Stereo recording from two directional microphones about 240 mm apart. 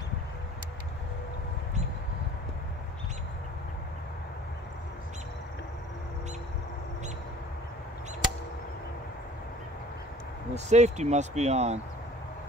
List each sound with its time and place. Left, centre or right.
10.5 s speech: right